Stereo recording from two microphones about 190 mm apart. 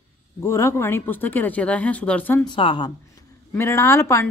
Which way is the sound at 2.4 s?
25° left (ahead or behind).